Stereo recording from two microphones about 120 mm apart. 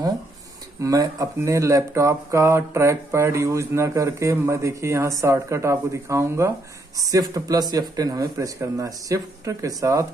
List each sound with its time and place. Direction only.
0.8 s speech: 25° right (ahead or behind)